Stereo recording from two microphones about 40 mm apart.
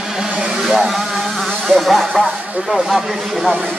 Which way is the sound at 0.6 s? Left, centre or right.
Centre.